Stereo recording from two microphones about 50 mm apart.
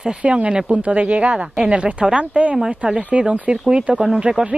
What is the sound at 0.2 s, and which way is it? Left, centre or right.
Speech, right.